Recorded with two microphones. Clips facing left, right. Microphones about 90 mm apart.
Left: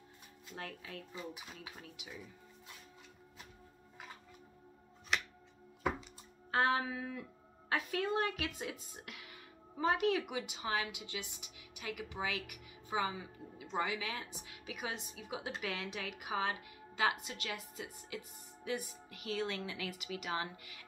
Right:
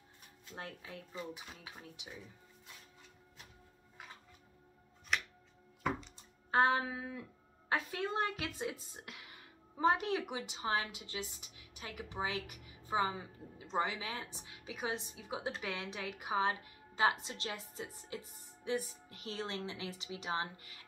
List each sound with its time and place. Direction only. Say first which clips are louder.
0.6 s music: left 1 dB; 25° right (ahead or behind)
5.1 s music: even; centre (ahead or behind)
6.5 s music: right 2 dB; 30° right (ahead or behind)
7.7 s a woman's voice: left 1 dB; 30° right (ahead or behind)